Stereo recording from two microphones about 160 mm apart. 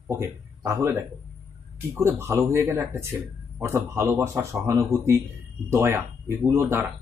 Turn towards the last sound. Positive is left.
turn(degrees=-15)  # may be behind; listen again after turning